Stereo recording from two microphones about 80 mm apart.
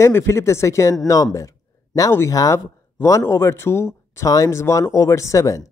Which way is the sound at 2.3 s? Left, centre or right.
Left.